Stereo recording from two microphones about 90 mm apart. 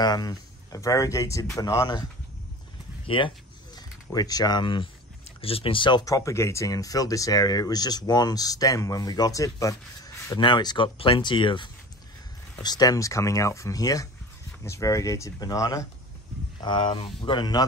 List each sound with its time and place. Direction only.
0.0 s speech: 50° left (ahead or behind)
3.1 s speech: 70° left (ahead or behind)
3.7 s speech: 45° left (ahead or behind)
5.4 s speech: 90° left; by 6.0 s 65° left (ahead or behind)
6.0 s speech: 35° left (ahead or behind)
10.4 s speech: 55° left (ahead or behind)
11.0 s speech: 75° left (ahead or behind)
12.6 s speech: 45° left (ahead or behind)
16.6 s speech: 65° left (ahead or behind)